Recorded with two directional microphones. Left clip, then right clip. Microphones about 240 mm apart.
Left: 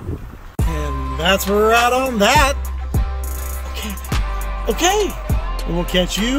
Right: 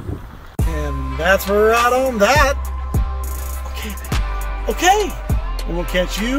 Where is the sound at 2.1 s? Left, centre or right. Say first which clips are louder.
Even; left.